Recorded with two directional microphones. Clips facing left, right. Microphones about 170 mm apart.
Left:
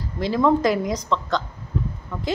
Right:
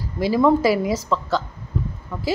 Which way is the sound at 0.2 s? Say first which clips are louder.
Right 2 dB; 10° right (ahead or behind).